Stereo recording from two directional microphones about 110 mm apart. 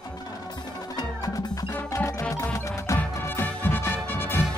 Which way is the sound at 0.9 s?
35° left (ahead or behind).